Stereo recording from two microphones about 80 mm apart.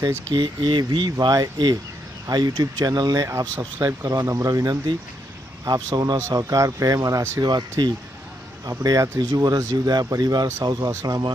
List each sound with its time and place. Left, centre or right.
0.3 s speech: right
1.2 s speech: right
3.3 s speech: right
6.3 s speech: right
7.8 s speech: right
8.6 s speech: right
9.2 s speech: right